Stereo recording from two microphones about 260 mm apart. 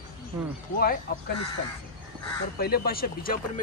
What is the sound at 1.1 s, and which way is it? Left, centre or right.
Speech, left.